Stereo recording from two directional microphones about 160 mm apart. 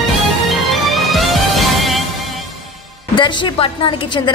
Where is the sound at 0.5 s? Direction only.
Centre (ahead or behind).